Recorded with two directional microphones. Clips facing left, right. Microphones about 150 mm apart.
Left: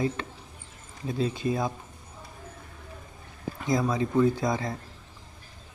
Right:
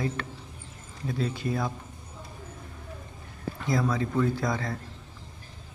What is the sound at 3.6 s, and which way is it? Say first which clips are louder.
A man's voice: left 1 dB; 20° left (ahead or behind).